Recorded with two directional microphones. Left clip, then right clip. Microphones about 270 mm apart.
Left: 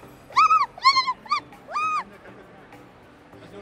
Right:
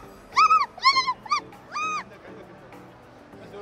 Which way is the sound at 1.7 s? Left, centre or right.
Centre.